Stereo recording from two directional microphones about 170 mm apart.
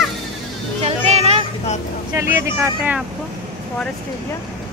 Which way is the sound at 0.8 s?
40° right (ahead or behind).